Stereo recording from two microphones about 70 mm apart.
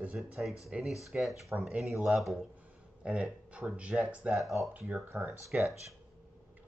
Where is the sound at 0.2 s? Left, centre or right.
Centre.